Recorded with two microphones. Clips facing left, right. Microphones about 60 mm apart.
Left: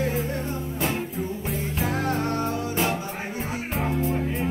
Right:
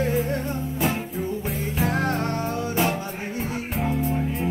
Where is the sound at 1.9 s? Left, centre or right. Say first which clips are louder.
Right 1 dB; right.